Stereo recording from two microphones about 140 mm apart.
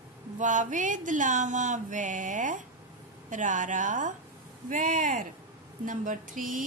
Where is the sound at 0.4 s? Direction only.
65° right (ahead or behind).